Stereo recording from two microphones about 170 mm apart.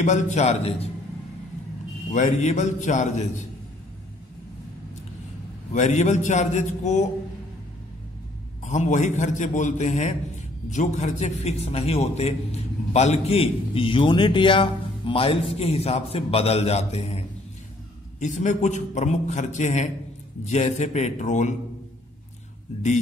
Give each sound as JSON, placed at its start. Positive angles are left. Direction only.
{"t": 0.0, "sound": "a man's voice", "side_deg": 45}
{"t": 2.0, "sound": "a man's voice", "side_deg": 45}
{"t": 5.7, "sound": "a man's voice", "side_deg": 45}
{"t": 8.6, "sound": "a man's voice", "side_deg": 45}
{"t": 18.2, "sound": "a man's voice", "side_deg": 45}